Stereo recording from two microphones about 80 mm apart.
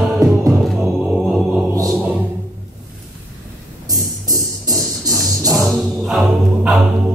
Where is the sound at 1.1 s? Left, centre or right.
Centre.